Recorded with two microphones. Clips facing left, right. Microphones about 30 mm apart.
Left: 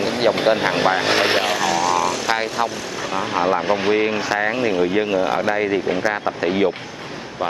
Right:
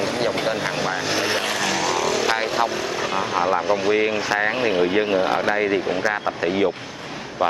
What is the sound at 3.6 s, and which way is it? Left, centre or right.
Speech, centre.